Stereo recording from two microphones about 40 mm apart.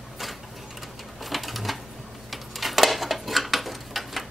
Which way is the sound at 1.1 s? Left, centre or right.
Centre.